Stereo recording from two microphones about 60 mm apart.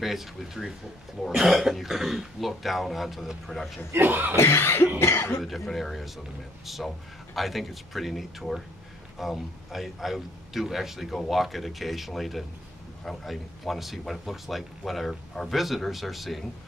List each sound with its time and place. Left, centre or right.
0.0 s speech: centre
3.9 s speech: right
4.4 s cough: left
5.4 s speech: centre